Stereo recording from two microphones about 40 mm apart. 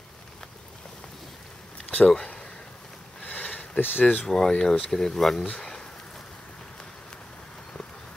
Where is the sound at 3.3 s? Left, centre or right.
Left.